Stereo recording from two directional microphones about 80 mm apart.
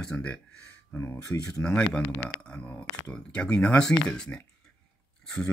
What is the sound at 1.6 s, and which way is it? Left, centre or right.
Speech, centre.